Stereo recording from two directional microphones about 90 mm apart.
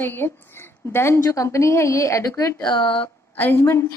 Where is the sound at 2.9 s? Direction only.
20° left (ahead or behind).